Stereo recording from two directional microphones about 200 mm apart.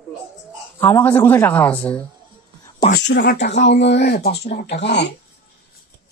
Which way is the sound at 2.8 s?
55° left (ahead or behind).